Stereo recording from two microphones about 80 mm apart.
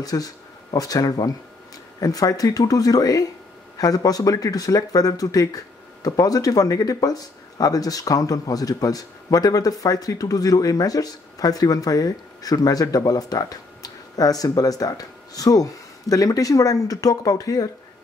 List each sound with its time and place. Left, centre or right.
0.0 s speech: left